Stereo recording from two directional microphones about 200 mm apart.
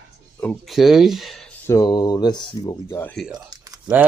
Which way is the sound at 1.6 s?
20° left (ahead or behind).